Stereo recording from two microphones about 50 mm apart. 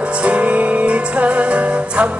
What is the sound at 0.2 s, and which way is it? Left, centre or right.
Music, right.